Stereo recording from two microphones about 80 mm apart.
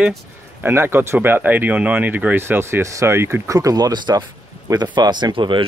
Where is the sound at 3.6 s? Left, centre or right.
Right.